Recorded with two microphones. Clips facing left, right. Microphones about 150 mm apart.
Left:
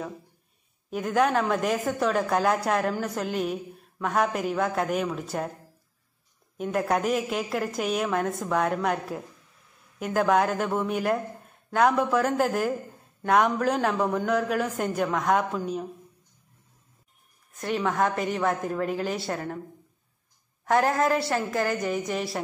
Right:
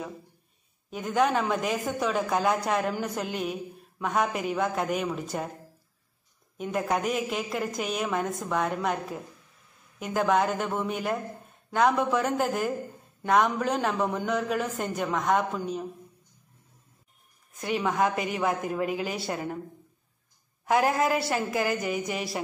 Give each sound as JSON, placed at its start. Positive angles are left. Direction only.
{"t": 0.8, "sound": "a woman's voice", "side_deg": 0}
{"t": 6.6, "sound": "a woman's voice", "side_deg": 0}
{"t": 17.6, "sound": "a woman's voice", "side_deg": -5}
{"t": 20.6, "sound": "a woman's voice", "side_deg": -10}